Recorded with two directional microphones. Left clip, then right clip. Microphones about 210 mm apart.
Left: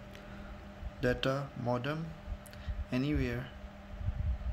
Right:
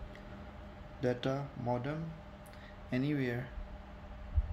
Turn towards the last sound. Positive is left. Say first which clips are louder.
# left 1 dB
turn(degrees=5)  # may be behind; listen again after turning